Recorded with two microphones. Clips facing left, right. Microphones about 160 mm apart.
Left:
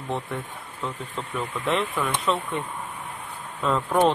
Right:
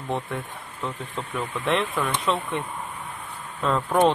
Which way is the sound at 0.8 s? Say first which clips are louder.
Even; centre (ahead or behind).